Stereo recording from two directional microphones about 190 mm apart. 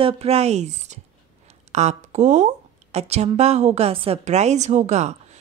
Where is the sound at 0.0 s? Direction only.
30° right (ahead or behind).